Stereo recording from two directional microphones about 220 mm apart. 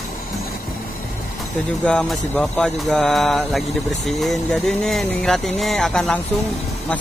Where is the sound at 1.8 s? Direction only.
5° left (ahead or behind).